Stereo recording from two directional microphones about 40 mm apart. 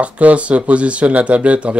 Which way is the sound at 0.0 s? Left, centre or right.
Right.